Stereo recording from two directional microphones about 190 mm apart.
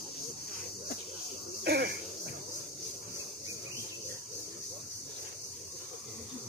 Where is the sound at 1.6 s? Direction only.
60° right (ahead or behind).